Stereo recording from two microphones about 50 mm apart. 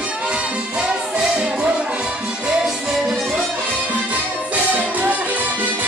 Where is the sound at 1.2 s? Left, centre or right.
Centre.